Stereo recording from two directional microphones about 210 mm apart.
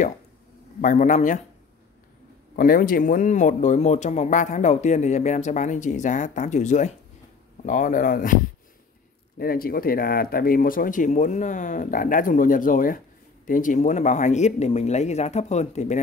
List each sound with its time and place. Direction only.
0.7 s speech: 40° left (ahead or behind)
2.5 s speech: 40° left (ahead or behind)
9.4 s speech: 45° left (ahead or behind)